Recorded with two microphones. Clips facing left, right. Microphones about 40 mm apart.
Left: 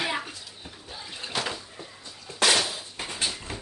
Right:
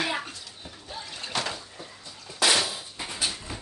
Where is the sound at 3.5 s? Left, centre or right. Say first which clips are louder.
Left 1 dB; left.